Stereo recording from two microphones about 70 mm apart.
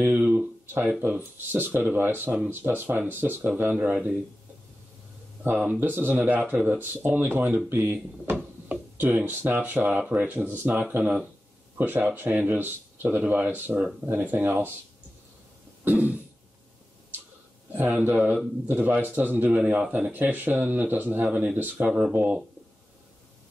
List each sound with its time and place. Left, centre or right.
0.2 s a sound: centre
0.8 s speech: right
5.8 s speech: right
15.8 s throat clearing: right
18.0 s speech: right
22.0 s speech: centre